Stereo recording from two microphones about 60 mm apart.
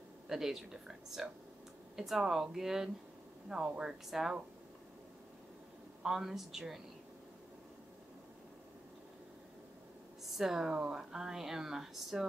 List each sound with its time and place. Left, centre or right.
0.3 s speech: centre
6.0 s speech: centre
10.3 s speech: centre